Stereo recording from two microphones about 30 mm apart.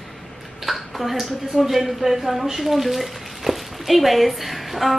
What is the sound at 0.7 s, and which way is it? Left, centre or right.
A woman's voice, centre.